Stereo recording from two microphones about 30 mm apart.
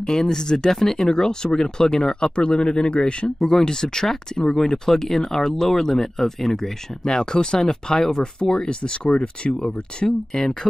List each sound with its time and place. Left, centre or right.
0.0 s speech: left
3.4 s speech: centre
7.1 s speech: left